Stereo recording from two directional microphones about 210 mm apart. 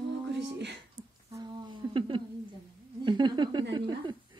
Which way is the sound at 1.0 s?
15° right (ahead or behind).